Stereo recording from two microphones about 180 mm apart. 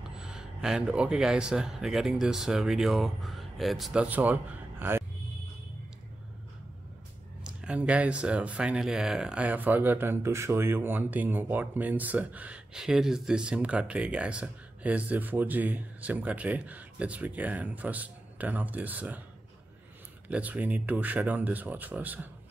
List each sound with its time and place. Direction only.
0.1 s speech: 5° right (ahead or behind)
7.4 s speech: 5° right (ahead or behind)
20.2 s speech: 10° right (ahead or behind)